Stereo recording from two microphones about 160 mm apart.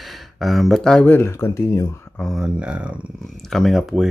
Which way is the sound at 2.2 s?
Centre (ahead or behind).